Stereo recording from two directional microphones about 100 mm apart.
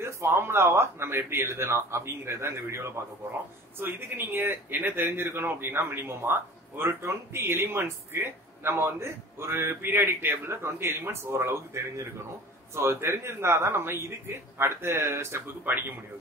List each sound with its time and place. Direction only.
0.0 s a man's voice: 25° right (ahead or behind)